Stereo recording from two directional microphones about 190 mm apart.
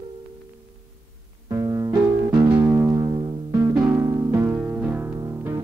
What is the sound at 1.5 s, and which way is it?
Music, 20° right (ahead or behind).